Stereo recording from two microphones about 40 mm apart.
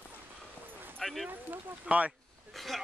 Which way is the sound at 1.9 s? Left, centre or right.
Right.